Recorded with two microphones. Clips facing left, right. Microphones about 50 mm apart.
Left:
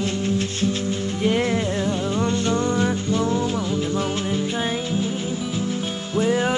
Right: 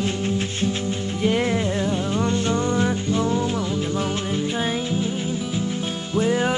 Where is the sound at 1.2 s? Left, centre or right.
Centre.